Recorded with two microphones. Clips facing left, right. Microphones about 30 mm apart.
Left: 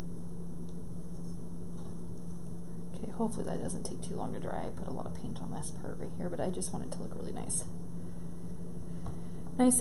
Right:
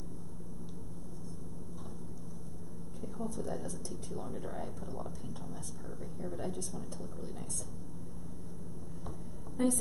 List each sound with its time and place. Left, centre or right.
3.2 s a woman's voice: left
3.6 s speech: centre
6.3 s speech: left
9.6 s a woman's voice: left